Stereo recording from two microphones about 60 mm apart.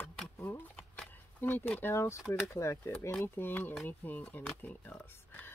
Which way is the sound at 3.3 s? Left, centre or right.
Left.